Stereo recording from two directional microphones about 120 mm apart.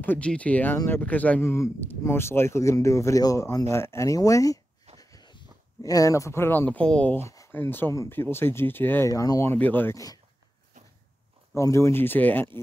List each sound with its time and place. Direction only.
0.0 s speech: 15° left (ahead or behind)
7.2 s speech: 25° left (ahead or behind)
9.1 s speech: 30° left (ahead or behind)
9.5 s speech: 15° left (ahead or behind)
11.5 s speech: 25° left (ahead or behind)